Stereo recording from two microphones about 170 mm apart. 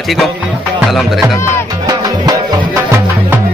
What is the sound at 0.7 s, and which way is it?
Speech, centre (ahead or behind).